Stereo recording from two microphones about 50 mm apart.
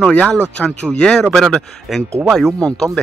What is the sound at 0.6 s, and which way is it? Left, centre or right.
Speech, centre.